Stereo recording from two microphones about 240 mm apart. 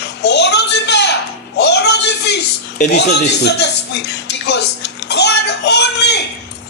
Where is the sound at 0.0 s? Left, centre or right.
Left.